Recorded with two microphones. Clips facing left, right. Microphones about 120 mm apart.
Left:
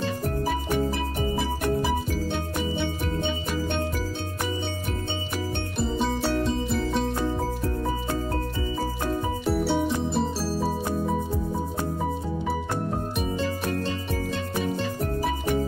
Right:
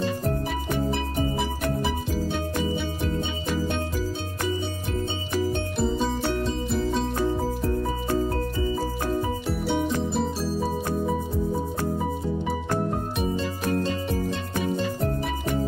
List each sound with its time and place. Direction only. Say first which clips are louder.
5.8 s music: even; centre (ahead or behind)
10.0 s music: even; centre (ahead or behind)